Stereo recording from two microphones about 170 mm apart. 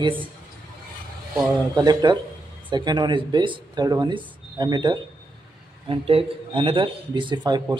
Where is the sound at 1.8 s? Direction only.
25° right (ahead or behind).